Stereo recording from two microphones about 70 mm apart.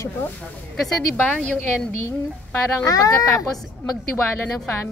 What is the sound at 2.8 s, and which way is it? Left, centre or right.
Speech, left.